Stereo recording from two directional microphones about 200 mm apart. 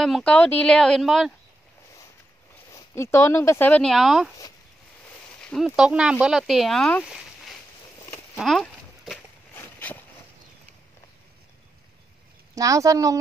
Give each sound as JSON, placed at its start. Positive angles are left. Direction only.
{"t": 0.0, "sound": "speech", "side_deg": 5}
{"t": 2.7, "sound": "speech", "side_deg": 15}
{"t": 5.4, "sound": "speech", "side_deg": 0}
{"t": 7.1, "sound": "a sound", "side_deg": 0}
{"t": 8.4, "sound": "horse", "side_deg": 0}
{"t": 9.6, "sound": "a sound", "side_deg": 10}
{"t": 12.5, "sound": "a woman's voice", "side_deg": -15}